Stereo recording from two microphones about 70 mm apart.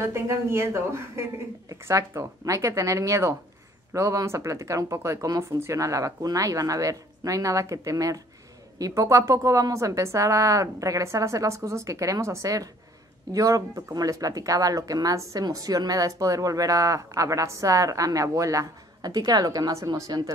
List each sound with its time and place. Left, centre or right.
0.0 s a woman's voice: right
19.1 s a woman's voice: right